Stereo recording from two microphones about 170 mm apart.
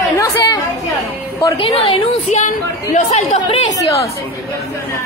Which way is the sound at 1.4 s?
30° left (ahead or behind).